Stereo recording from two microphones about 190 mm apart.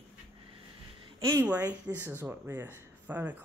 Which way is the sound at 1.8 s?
10° right (ahead or behind).